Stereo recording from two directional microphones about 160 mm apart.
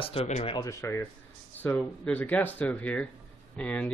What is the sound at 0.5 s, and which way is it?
Speech, 20° left (ahead or behind).